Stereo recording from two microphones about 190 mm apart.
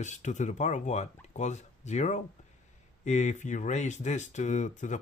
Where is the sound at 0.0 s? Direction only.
40° left (ahead or behind).